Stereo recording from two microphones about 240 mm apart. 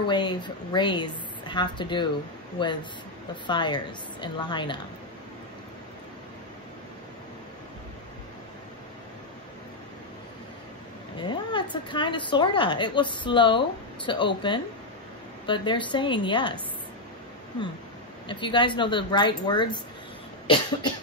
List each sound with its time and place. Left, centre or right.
0.0 s a woman's voice: centre
11.1 s a woman's voice: centre
18.3 s a woman's voice: centre